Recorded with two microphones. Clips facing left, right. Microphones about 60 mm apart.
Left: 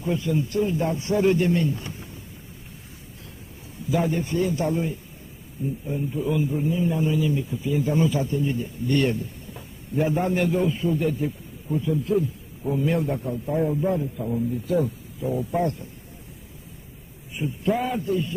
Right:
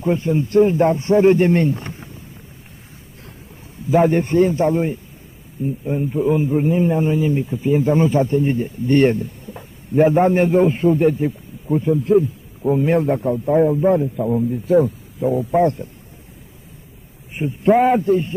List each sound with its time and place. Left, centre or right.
0.0 s a man's voice: right
3.9 s a man's voice: right
17.4 s a man's voice: right